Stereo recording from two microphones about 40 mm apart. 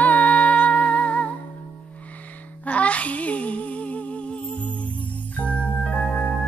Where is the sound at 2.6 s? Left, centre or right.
Left.